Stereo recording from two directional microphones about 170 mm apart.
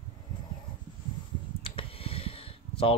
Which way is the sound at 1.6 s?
30° left (ahead or behind).